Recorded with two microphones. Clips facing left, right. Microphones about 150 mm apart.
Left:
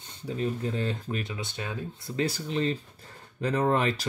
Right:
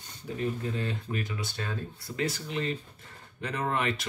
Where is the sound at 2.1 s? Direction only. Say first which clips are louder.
Left 3 dB; 30° left (ahead or behind).